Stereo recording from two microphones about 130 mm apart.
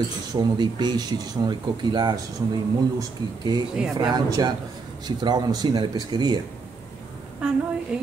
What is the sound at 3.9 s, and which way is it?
Speech, 30° right (ahead or behind).